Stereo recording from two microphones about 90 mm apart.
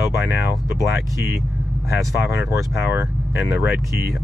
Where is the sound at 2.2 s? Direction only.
30° right (ahead or behind).